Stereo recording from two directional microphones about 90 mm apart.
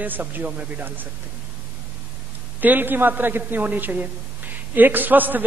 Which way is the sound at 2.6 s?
20° right (ahead or behind).